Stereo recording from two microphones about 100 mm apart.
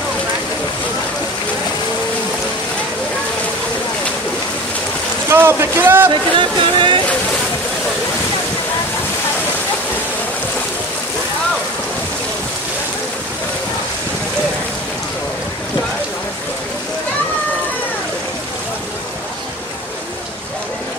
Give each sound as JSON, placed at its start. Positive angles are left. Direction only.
{"t": 5.3, "sound": "speech", "side_deg": -25}
{"t": 6.0, "sound": "speech", "side_deg": -55}